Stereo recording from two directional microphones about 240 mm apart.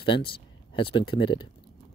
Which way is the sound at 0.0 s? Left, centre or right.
Left.